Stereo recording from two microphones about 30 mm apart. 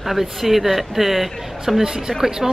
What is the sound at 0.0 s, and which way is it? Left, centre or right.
Speech, centre.